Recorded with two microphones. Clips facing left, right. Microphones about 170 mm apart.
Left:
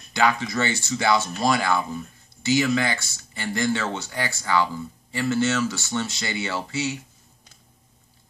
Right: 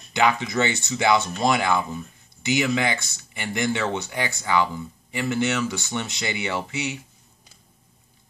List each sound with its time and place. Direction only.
0.1 s speech: 20° right (ahead or behind)